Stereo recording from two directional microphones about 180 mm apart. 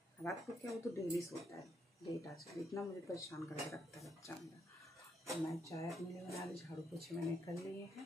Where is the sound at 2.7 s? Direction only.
15° left (ahead or behind).